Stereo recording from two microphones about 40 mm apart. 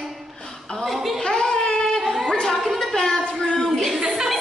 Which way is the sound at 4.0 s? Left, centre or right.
Centre.